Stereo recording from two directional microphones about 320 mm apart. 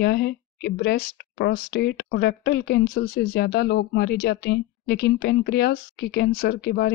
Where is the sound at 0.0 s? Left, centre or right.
Left.